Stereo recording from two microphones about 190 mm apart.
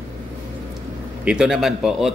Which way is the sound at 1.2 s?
5° right (ahead or behind).